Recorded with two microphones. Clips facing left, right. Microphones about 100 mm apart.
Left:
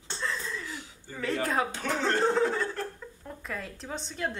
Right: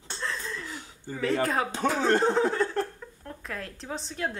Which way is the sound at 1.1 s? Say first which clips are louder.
Right 3 dB; centre (ahead or behind).